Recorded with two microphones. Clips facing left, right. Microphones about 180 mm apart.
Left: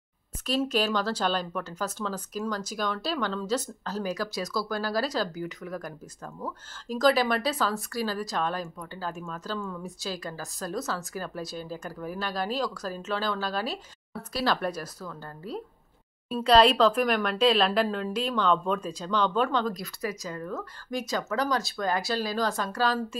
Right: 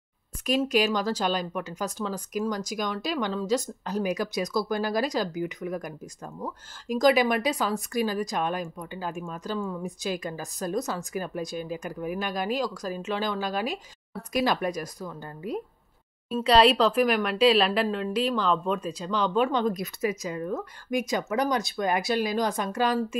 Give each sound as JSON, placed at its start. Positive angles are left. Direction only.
{"t": 0.5, "sound": "a woman's voice", "side_deg": -10}